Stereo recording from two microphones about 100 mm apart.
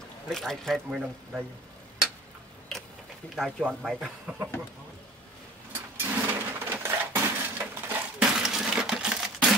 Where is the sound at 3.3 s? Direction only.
5° right (ahead or behind).